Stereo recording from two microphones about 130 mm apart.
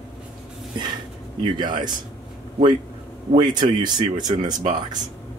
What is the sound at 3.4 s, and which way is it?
A man's voice, 35° right (ahead or behind).